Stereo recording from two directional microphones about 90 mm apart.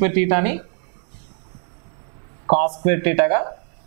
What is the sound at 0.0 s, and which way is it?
Speech, 15° right (ahead or behind).